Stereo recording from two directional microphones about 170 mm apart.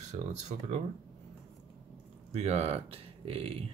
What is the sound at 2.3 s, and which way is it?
Speech, 40° right (ahead or behind).